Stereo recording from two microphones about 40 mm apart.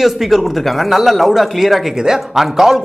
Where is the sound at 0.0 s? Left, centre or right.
Centre.